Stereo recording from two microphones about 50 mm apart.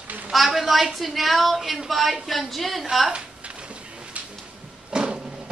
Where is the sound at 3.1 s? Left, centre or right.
Right.